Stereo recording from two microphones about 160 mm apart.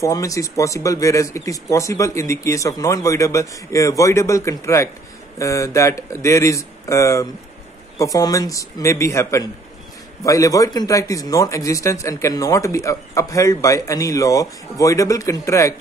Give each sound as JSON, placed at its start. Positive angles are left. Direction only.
{"t": 0.0, "sound": "a man's voice", "side_deg": 20}